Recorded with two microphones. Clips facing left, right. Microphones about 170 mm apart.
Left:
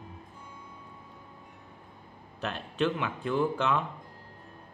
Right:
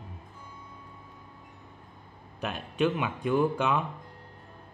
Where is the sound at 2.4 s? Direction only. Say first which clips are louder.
Right 2 dB; 15° right (ahead or behind).